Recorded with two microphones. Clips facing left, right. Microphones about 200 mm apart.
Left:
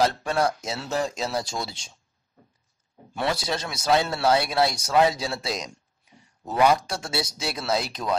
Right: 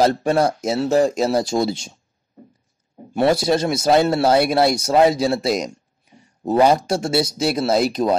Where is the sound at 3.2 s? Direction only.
45° right (ahead or behind).